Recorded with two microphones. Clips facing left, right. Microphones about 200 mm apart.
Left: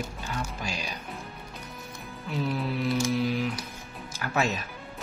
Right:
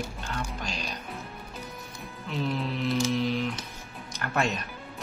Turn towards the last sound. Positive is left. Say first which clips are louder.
# left 1 dB
turn(degrees=0)  # may be behind; listen again after turning